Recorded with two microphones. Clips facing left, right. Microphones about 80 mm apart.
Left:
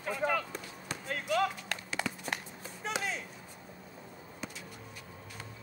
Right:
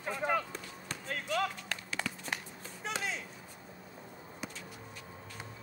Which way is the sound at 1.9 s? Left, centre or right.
Centre.